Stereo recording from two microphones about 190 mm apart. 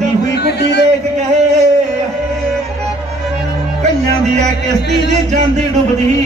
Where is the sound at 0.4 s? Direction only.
60° left (ahead or behind).